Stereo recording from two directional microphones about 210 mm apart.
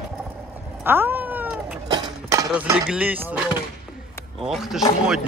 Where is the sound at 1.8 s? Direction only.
20° right (ahead or behind).